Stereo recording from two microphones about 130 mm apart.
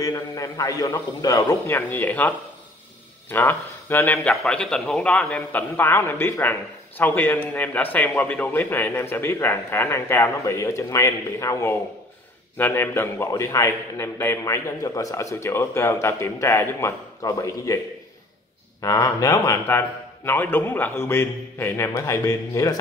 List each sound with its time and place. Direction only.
0.0 s a man's voice: 25° left (ahead or behind)
1.8 s a man's voice: 15° left (ahead or behind)
18.8 s a man's voice: 25° left (ahead or behind)